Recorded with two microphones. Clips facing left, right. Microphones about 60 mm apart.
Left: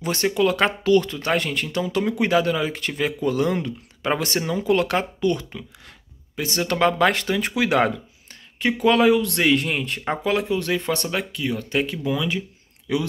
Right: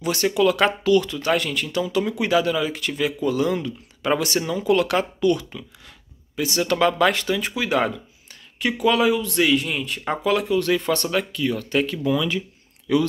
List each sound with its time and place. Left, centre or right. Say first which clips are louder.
0.0 s speech: right 1 dB; left
7.5 s speech: left 4 dB; left
8.5 s speech: left 1 dB; left
10.2 s speech: right 3 dB; left